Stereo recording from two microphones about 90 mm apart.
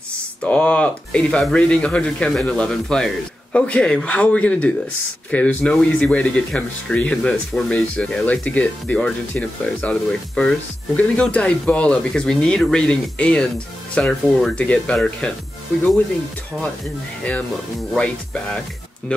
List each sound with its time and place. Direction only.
0.4 s speech: 15° left (ahead or behind)
17.9 s speech: 10° left (ahead or behind)